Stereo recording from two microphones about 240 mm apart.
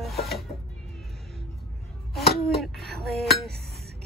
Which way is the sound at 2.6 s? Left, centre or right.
Centre.